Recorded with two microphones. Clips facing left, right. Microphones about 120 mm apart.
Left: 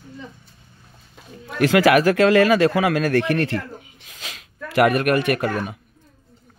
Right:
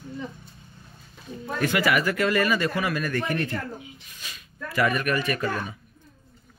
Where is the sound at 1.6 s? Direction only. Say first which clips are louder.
Left 8 dB; 90° left; by 5.7 s 65° left (ahead or behind).